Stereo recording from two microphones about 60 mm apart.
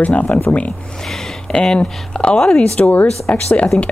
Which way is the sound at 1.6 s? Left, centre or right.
Centre.